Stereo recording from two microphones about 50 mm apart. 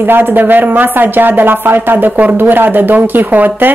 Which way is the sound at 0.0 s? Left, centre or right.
Right.